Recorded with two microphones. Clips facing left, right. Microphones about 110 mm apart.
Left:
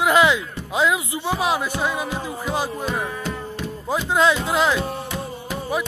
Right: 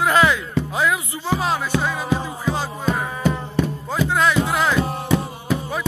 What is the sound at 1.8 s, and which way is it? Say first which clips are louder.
Music: right 2 dB; 15° left (ahead or behind).